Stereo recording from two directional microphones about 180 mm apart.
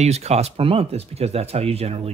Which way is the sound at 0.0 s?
35° right (ahead or behind).